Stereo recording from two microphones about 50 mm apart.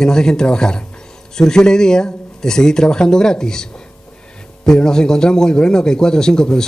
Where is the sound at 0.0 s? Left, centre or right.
Centre.